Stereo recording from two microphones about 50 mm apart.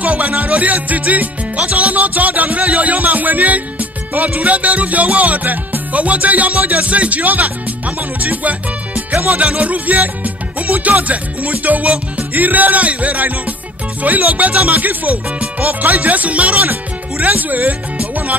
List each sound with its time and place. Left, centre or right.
0.0 s music: right